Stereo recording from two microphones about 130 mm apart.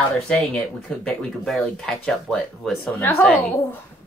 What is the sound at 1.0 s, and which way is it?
Speech, centre (ahead or behind).